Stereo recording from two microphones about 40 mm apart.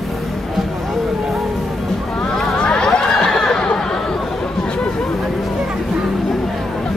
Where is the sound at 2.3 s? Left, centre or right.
Centre.